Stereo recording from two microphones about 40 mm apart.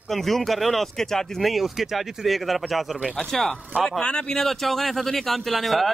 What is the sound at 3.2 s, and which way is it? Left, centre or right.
Speech, centre.